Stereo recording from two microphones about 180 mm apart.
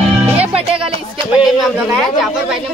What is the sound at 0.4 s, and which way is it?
Music, 35° right (ahead or behind).